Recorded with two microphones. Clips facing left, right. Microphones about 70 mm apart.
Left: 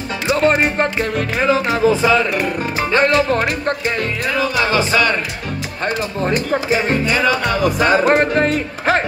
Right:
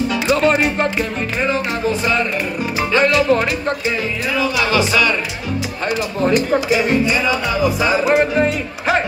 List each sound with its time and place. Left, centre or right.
0.3 s music: left
2.9 s music: left